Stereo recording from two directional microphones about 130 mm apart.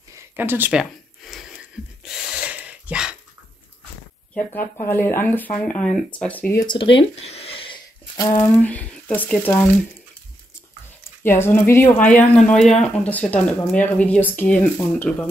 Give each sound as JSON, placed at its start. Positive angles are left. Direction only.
{"t": 0.1, "sound": "a sound", "side_deg": -15}
{"t": 4.8, "sound": "speech", "side_deg": 15}
{"t": 6.6, "sound": "speech", "side_deg": 40}
{"t": 8.2, "sound": "speech", "side_deg": 30}
{"t": 8.5, "sound": "speech", "side_deg": 15}
{"t": 11.2, "sound": "speech", "side_deg": 15}